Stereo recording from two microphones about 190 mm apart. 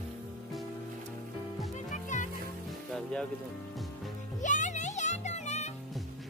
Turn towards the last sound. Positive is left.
turn(degrees=35)  # may be behind; listen again after turning